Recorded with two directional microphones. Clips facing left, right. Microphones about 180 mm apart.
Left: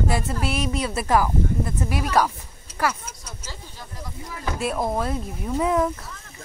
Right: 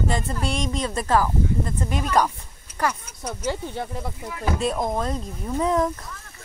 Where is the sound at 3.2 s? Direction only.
60° right (ahead or behind).